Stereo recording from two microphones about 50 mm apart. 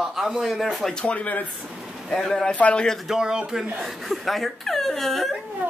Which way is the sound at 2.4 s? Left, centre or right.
Left.